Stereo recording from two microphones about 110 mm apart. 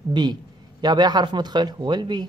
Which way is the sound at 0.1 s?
40° right (ahead or behind).